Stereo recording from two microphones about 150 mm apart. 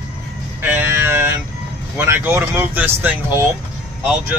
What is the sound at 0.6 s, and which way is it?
Music, 15° right (ahead or behind).